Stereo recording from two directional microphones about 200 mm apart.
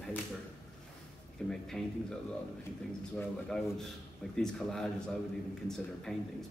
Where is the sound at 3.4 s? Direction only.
Centre (ahead or behind).